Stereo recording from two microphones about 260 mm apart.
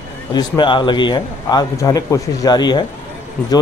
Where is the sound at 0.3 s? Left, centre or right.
Centre.